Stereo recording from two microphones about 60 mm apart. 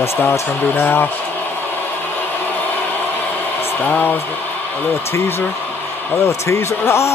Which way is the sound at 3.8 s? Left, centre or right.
Left.